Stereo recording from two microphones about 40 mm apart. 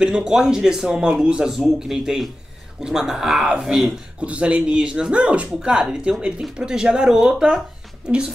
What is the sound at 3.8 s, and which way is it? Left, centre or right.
Speech, right.